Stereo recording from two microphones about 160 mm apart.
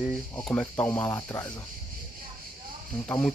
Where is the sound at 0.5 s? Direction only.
10° left (ahead or behind).